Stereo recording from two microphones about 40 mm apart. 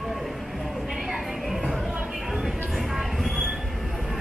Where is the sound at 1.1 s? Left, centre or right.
Centre.